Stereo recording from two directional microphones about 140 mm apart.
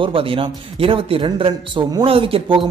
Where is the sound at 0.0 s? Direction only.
40° right (ahead or behind).